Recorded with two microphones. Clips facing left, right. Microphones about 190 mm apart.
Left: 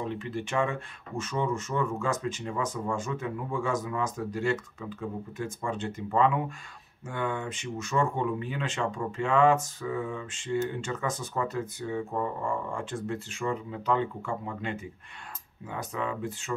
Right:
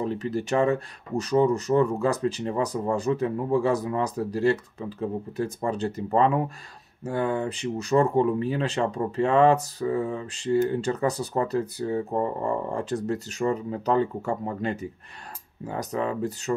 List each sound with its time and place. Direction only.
0.0 s speech: 40° right (ahead or behind)